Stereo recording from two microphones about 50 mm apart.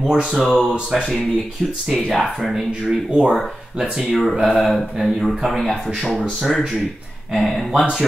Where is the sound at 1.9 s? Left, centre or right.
Centre.